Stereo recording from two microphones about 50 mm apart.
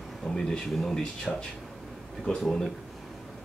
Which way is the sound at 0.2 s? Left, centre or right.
Left.